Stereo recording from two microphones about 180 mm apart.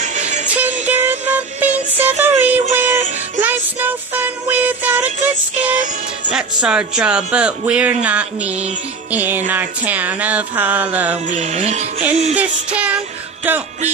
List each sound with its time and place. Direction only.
0.0 s music: 40° right (ahead or behind)
0.5 s music: 10° right (ahead or behind)
6.3 s speech: 5° right (ahead or behind)
9.1 s music: 10° right (ahead or behind)
11.2 s music: 40° right (ahead or behind)
12.4 s music: 5° right (ahead or behind)